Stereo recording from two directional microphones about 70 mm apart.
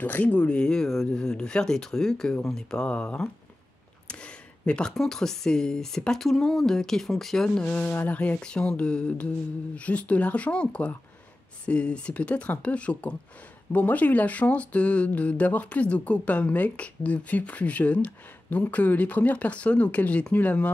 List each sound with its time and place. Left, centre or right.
0.0 s speech: left
4.1 s a sound: centre
4.9 s speech: centre; by 20.7 s left